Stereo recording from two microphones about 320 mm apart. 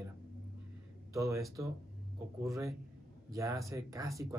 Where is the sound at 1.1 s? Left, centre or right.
Centre.